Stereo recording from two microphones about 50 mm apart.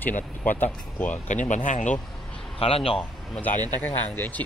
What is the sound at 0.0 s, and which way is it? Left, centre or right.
Speech, left.